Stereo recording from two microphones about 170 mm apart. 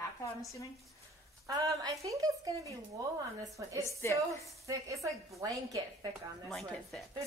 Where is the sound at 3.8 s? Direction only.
15° left (ahead or behind).